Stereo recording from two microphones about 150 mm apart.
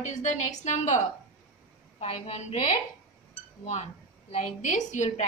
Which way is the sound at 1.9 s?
45° left (ahead or behind).